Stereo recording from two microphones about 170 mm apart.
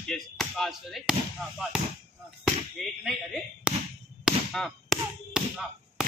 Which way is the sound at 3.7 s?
5° right (ahead or behind).